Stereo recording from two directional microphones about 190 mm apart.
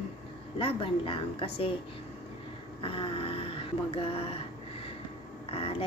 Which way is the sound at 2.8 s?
30° left (ahead or behind).